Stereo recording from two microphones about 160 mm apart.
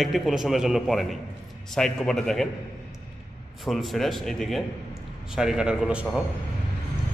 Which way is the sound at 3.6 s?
Centre (ahead or behind).